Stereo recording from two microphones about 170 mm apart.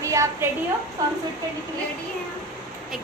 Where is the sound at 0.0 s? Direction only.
15° right (ahead or behind).